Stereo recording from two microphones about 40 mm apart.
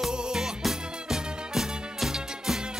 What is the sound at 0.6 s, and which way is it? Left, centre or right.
Music, centre.